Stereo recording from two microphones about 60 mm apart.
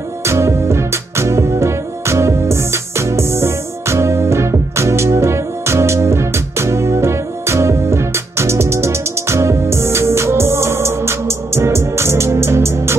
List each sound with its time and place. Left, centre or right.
0.2 s music: right